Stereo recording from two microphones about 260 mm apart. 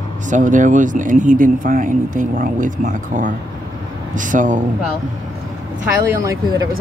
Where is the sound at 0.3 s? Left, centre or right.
Right.